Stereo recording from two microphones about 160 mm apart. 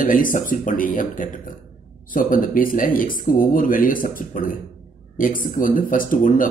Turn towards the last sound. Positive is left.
turn(degrees=60)  # may be behind; listen again after turning